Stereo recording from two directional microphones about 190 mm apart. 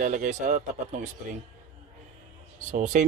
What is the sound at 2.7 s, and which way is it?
Speech, 40° right (ahead or behind).